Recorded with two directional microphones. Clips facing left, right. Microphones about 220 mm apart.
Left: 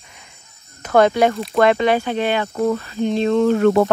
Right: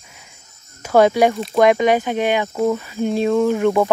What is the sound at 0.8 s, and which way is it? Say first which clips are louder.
Speech: right 1 dB; 10° right (ahead or behind).